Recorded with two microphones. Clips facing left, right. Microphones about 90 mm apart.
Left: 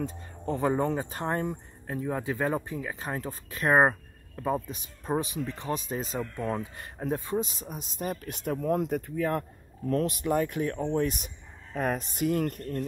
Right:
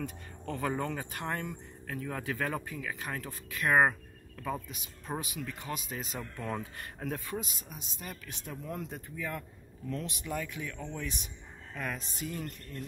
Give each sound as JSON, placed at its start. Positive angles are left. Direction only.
{"t": 0.0, "sound": "speech", "side_deg": 25}
{"t": 6.6, "sound": "speech", "side_deg": 20}
{"t": 7.4, "sound": "speech", "side_deg": 40}